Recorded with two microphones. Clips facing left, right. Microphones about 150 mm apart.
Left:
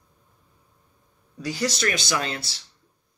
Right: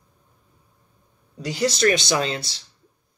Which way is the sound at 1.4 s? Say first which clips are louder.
Right 5 dB; 20° right (ahead or behind).